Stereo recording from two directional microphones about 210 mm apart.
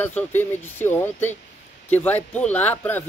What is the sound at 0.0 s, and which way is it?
Speech, 10° left (ahead or behind).